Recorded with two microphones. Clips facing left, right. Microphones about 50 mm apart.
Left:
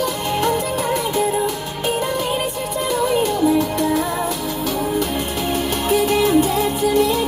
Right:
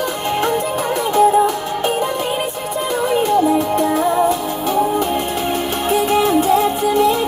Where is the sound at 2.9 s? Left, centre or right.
Right.